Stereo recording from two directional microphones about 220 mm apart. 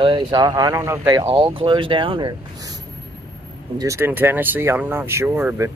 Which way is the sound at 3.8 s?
15° right (ahead or behind).